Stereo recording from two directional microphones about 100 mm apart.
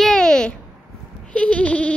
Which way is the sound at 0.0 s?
5° left (ahead or behind).